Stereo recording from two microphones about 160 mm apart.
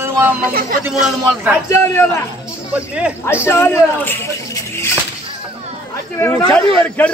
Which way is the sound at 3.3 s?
15° left (ahead or behind).